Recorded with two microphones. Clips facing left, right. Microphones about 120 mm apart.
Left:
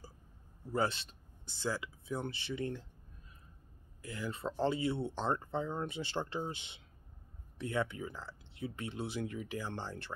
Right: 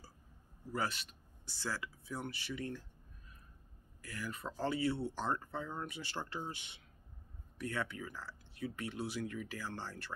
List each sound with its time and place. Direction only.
0.7 s speech: 25° left (ahead or behind)
4.0 s speech: 20° left (ahead or behind)